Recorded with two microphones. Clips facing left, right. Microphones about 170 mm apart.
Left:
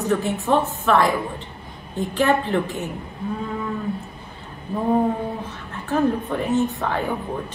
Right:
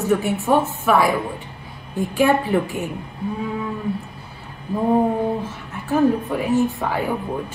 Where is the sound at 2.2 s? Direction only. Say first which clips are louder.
Right 2 dB; 10° right (ahead or behind).